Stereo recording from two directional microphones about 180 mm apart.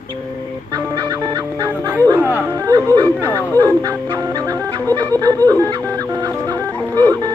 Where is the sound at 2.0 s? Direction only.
15° right (ahead or behind).